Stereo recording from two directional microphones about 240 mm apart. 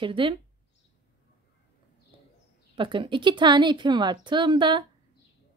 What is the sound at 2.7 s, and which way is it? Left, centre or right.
A woman's voice, right.